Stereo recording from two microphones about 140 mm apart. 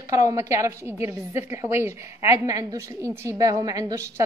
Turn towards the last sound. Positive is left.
turn(degrees=-25)  # may be behind; listen again after turning